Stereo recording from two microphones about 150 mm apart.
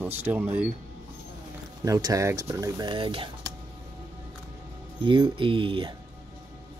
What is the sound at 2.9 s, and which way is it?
Speech, 35° right (ahead or behind).